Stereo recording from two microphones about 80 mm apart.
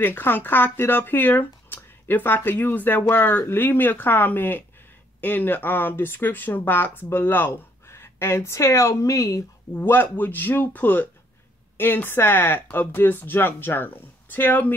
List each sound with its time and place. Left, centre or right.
0.0 s speech: left
9.8 s speech: left